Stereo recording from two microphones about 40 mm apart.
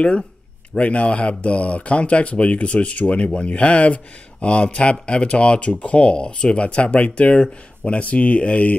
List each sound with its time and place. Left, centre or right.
0.7 s speech: left